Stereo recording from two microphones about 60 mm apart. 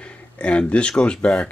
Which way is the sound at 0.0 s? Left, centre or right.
Centre.